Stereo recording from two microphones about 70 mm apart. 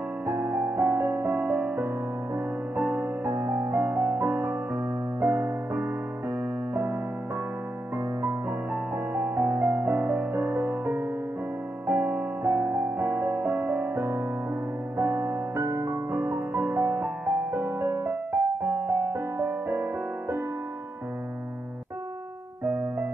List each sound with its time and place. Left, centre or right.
0.3 s music: right
8.9 s music: right